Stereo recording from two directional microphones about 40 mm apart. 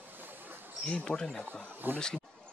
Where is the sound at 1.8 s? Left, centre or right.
Right.